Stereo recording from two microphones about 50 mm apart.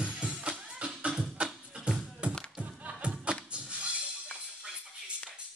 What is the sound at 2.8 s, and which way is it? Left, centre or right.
Music, right.